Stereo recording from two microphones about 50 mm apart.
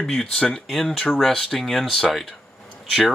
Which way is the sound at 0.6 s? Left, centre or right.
Centre.